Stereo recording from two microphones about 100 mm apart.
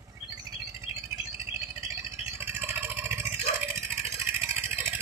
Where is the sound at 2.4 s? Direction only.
20° right (ahead or behind).